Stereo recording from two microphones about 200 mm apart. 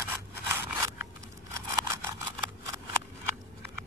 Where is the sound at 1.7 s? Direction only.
15° right (ahead or behind).